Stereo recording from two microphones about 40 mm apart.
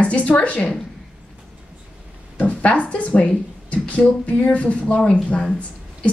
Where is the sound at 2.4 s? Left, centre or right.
Left.